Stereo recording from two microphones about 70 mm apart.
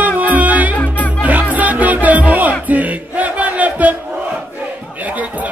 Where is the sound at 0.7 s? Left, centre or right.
Left.